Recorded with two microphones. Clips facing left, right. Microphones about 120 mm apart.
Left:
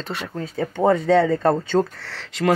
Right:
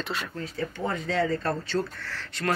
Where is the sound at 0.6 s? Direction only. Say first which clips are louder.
Left 12 dB; 75° left (ahead or behind); by 2.5 s 90° left.